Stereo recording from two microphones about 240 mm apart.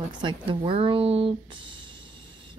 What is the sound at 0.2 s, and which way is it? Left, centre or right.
Speech, centre.